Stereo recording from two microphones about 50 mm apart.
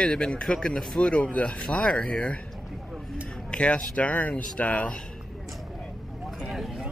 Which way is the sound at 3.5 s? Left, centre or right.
Left.